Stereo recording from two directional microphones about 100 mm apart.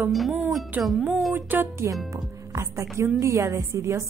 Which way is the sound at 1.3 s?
20° right (ahead or behind).